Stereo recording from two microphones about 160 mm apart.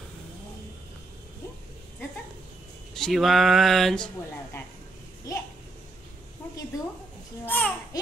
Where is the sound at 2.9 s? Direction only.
Centre (ahead or behind).